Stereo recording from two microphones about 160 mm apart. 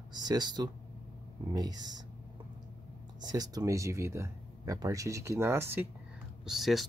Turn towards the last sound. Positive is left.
turn(degrees=0)  # may be behind; listen again after turning